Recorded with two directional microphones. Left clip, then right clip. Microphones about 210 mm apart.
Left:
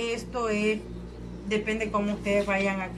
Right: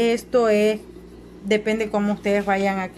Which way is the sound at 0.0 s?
45° right (ahead or behind).